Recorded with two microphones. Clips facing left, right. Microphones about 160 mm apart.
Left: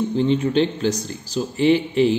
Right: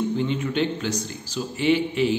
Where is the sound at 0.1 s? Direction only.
30° left (ahead or behind).